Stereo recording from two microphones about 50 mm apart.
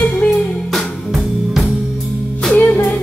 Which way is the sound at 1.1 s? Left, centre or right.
Centre.